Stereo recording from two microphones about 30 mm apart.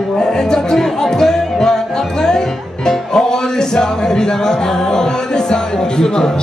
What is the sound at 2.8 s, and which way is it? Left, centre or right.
Music, left.